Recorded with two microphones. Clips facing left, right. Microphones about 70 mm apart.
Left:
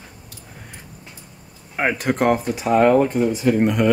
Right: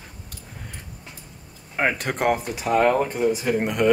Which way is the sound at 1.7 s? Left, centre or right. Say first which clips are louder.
Left 3 dB; centre.